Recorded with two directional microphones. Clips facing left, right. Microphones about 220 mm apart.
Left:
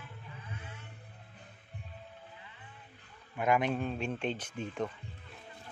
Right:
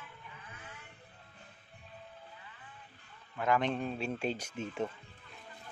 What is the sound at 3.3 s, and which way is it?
Speech, 15° left (ahead or behind).